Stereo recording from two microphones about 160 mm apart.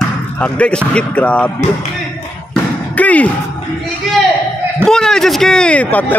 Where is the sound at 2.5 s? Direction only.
10° left (ahead or behind).